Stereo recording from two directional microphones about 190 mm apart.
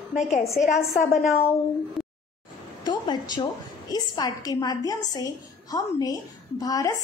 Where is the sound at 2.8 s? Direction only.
20° left (ahead or behind).